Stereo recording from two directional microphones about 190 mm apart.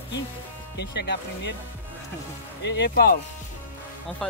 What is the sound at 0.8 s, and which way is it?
Speech, 60° left (ahead or behind).